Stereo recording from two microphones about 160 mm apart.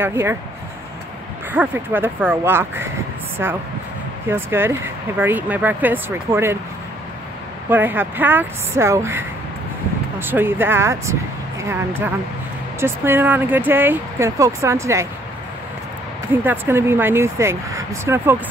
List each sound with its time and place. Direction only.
0.0 s speech: 15° right (ahead or behind)
1.5 s speech: 10° right (ahead or behind)
7.7 s speech: 15° right (ahead or behind)
12.8 s speech: 15° right (ahead or behind)
16.4 s speech: 15° right (ahead or behind)